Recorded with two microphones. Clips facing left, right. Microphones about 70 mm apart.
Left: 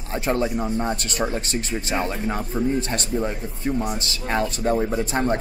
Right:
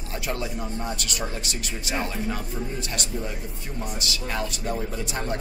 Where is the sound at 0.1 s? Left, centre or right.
Left.